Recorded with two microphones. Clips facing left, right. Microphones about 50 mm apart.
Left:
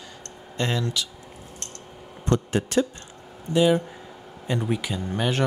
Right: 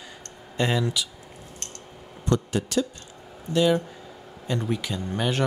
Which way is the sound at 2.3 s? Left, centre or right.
Left.